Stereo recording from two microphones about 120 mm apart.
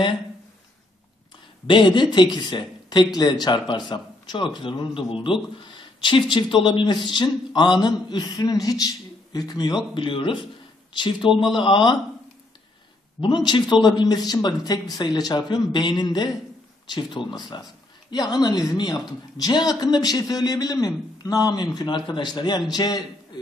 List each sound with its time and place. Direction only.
1.7 s speech: 40° left (ahead or behind)
9.9 s speech: 45° left (ahead or behind)
13.2 s speech: 40° left (ahead or behind)
17.3 s speech: 35° left (ahead or behind)